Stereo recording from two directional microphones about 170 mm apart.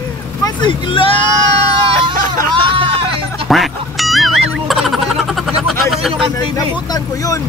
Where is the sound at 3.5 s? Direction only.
Centre (ahead or behind).